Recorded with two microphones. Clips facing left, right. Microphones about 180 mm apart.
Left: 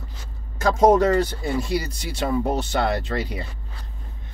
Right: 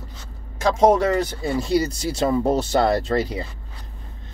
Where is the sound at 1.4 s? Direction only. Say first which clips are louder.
Right 4 dB; 35° right (ahead or behind).